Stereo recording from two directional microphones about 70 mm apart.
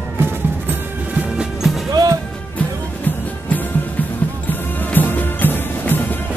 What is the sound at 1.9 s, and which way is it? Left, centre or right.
Music, right.